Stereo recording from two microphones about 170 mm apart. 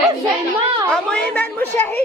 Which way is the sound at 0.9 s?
5° left (ahead or behind).